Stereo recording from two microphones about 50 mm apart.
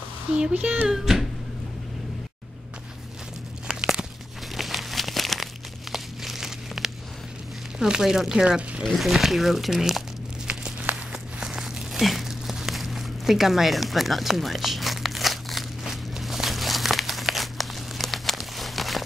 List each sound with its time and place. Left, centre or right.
0.4 s speech: right
0.8 s speech: centre
3.6 s a sound: centre
4.6 s crumpling: centre
7.8 s speech: centre
8.8 s speech: centre
10.4 s walk: centre
11.3 s a sound: centre
11.9 s a sound: centre